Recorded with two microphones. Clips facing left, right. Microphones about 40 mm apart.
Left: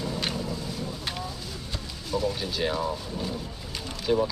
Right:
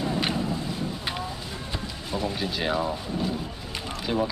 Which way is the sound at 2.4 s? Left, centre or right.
Centre.